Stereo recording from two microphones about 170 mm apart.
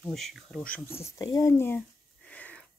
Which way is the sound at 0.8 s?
15° left (ahead or behind).